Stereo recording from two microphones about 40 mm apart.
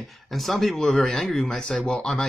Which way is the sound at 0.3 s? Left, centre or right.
Centre.